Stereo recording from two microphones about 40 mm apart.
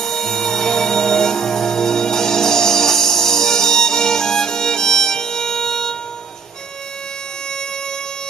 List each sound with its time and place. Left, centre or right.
0.0 s music: centre